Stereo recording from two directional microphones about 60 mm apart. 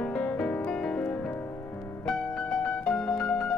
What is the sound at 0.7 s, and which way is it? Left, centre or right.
Music, centre.